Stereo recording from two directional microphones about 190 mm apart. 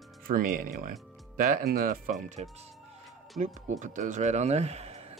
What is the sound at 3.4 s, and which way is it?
A man's voice, 40° right (ahead or behind).